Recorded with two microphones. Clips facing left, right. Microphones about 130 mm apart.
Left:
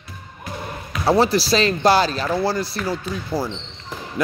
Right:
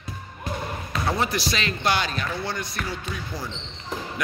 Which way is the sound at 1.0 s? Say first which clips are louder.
Left 9 dB; 35° left (ahead or behind).